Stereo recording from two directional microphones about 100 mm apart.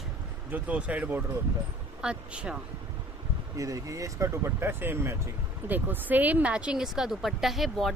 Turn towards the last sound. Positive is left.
turn(degrees=0)  # may be behind; listen again after turning